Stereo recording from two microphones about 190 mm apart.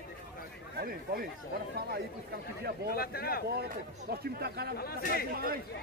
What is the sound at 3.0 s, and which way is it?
Speech, 55° left (ahead or behind).